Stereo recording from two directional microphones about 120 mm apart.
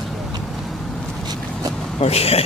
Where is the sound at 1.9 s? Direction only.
60° left (ahead or behind).